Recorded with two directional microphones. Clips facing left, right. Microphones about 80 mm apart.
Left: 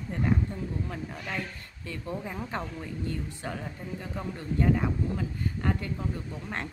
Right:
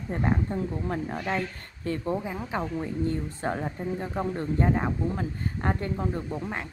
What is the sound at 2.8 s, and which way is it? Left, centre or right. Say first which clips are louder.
Speech: right 6 dB; right.